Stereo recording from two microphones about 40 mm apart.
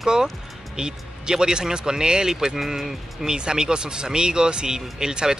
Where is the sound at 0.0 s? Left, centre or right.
Centre.